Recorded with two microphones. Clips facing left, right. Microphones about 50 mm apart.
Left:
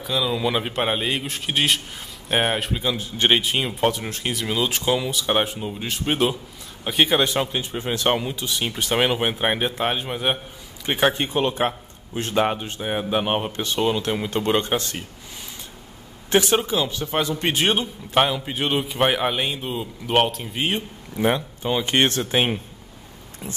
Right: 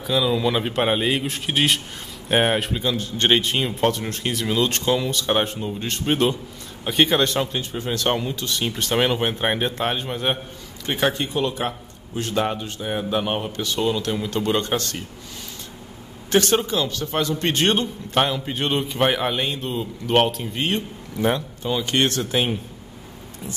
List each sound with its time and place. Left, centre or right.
0.0 s a man's voice: centre
10.9 s speech: left
16.3 s speech: centre; by 22.6 s left